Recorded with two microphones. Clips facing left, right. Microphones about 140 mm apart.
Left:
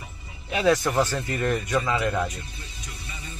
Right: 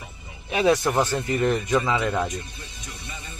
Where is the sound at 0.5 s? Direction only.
20° right (ahead or behind).